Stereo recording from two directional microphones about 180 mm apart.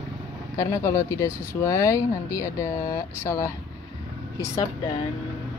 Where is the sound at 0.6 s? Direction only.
15° left (ahead or behind).